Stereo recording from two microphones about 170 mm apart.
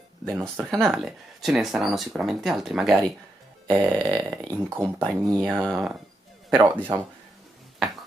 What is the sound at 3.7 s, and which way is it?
Speech, 15° right (ahead or behind).